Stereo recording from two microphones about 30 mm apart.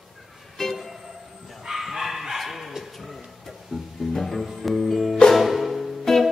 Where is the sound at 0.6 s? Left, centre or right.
Centre.